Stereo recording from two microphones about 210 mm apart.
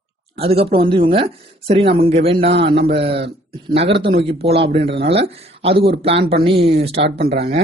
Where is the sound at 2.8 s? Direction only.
50° right (ahead or behind).